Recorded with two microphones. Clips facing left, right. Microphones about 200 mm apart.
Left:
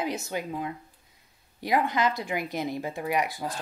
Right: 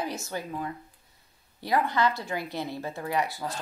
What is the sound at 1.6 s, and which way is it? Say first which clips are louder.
Speech: even; 15° left (ahead or behind).